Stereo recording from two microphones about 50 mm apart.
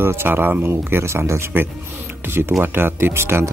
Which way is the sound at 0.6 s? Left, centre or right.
Right.